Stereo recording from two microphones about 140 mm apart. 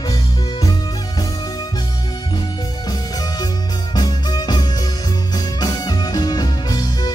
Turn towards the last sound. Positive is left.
turn(degrees=30)  # may be behind; listen again after turning